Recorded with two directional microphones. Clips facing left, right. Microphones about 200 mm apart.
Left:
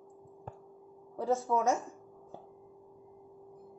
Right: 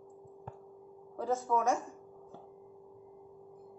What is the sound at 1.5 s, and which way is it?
Speech, 15° left (ahead or behind).